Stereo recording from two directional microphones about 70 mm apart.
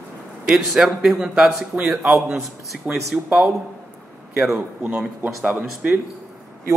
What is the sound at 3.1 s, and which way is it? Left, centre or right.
Speech, right.